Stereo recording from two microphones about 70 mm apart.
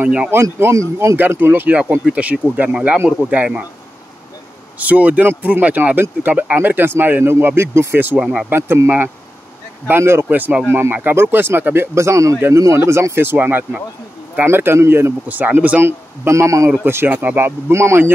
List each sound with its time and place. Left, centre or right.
0.0 s speech: centre
0.3 s speech: right
1.1 s speech: right
2.0 s speech: centre
4.7 s speech: right
8.2 s speech: centre
8.5 s speech: right
10.2 s speech: right
15.2 s speech: right
15.8 s speech: right
16.8 s speech: right
17.4 s speech: right